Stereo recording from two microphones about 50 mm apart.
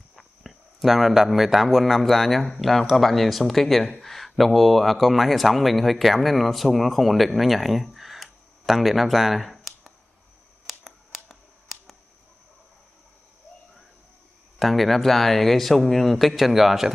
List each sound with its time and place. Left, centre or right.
0.1 s speech: centre
10.7 s a sound: centre
14.6 s speech: centre